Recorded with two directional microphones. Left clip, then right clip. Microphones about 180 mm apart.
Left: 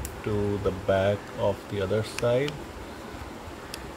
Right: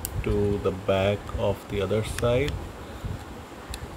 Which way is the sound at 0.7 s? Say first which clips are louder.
Left 2 dB; 15° right (ahead or behind).